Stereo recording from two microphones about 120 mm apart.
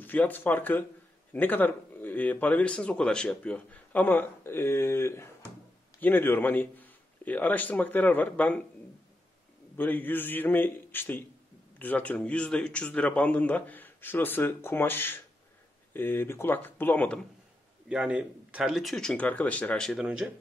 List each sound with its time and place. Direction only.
0.0 s a man's voice: 15° left (ahead or behind)
9.8 s speech: 15° left (ahead or behind)
17.8 s speech: 10° right (ahead or behind)